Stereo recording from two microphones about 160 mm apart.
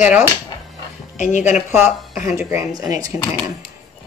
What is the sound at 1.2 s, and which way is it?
Speech, 50° left (ahead or behind).